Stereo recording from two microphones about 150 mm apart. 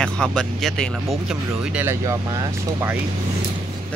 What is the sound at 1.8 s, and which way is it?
Speech, 15° right (ahead or behind).